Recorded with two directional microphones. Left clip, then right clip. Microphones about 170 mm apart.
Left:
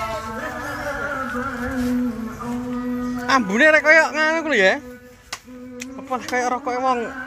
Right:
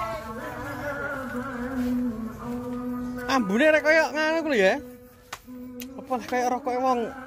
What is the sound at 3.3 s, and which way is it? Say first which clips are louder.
A man's voice: left 6 dB; 15° right (ahead or behind).